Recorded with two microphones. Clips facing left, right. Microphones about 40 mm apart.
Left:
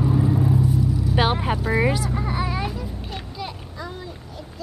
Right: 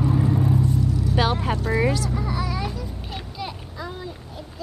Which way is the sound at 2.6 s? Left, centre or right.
Centre.